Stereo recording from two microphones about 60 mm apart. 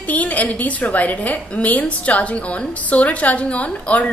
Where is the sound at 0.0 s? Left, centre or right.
Left.